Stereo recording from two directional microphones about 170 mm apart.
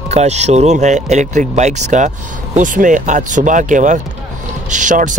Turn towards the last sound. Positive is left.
turn(degrees=-50)  # may be behind; listen again after turning